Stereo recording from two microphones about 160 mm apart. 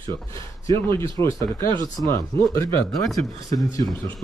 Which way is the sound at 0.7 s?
20° left (ahead or behind).